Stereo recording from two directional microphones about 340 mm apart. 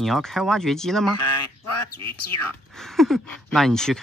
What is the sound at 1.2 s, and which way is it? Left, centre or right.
Speech, left.